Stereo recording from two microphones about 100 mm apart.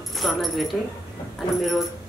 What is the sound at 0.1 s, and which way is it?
A woman's voice, centre (ahead or behind).